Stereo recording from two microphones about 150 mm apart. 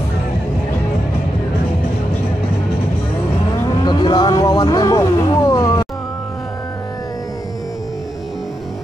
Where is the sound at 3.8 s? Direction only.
30° left (ahead or behind).